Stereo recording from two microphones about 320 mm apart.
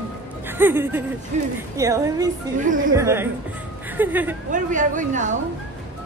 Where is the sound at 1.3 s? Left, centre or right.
Right.